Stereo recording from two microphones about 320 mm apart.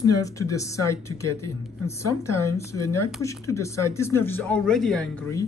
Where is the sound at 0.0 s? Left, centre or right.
Centre.